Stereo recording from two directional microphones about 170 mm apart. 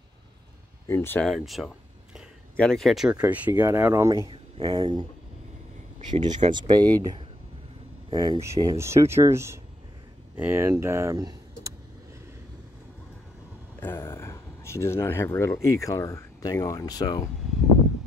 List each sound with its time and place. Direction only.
0.8 s speech: 15° left (ahead or behind)
1.3 s speech: centre (ahead or behind); by 4.2 s 15° right (ahead or behind)
4.3 s speech: 25° right (ahead or behind)
6.5 s speech: 25° right (ahead or behind)
13.7 s speech: 10° left (ahead or behind)